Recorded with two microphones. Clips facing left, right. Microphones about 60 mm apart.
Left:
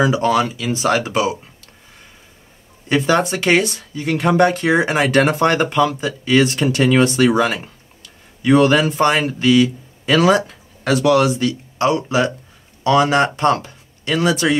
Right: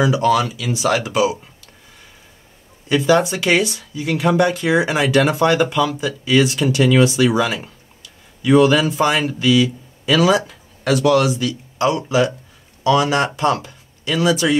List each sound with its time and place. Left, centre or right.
0.0 s speech: left
2.9 s a man's voice: left